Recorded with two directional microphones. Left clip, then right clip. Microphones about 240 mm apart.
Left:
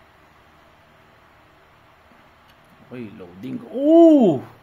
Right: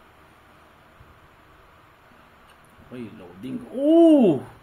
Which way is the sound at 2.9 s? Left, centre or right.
Left.